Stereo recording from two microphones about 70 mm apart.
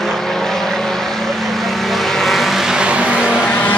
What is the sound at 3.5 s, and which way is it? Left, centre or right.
Vehicle, left.